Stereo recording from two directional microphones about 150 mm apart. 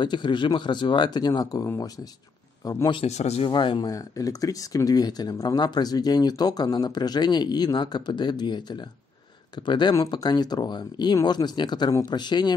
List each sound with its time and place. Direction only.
0.0 s speech: 30° left (ahead or behind)
3.0 s speech: 45° left (ahead or behind)
3.4 s speech: 30° left (ahead or behind)